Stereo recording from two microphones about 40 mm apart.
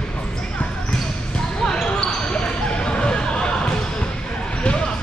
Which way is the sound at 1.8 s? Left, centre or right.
Left.